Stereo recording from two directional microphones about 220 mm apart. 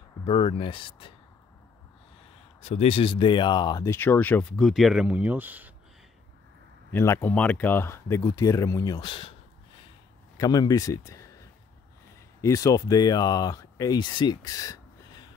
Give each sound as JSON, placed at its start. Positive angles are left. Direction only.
{"t": 0.2, "sound": "speech", "side_deg": 25}
{"t": 2.6, "sound": "speech", "side_deg": 30}
{"t": 6.9, "sound": "speech", "side_deg": 10}
{"t": 10.3, "sound": "speech", "side_deg": 15}